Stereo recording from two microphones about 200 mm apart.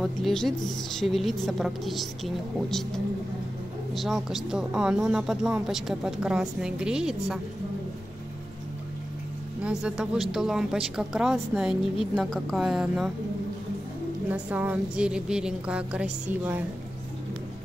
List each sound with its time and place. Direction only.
0.0 s speech: centre (ahead or behind)
3.9 s speech: centre (ahead or behind)
9.6 s speech: 5° right (ahead or behind)
14.3 s speech: 5° right (ahead or behind)